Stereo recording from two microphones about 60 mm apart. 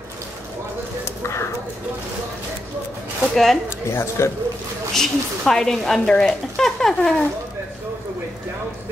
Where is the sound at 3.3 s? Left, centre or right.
Centre.